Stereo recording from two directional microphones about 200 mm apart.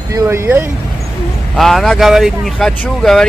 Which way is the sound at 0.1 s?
10° right (ahead or behind).